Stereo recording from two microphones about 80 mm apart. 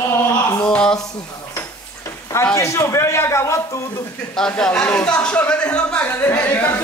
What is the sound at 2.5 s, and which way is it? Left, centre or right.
A man's voice, left.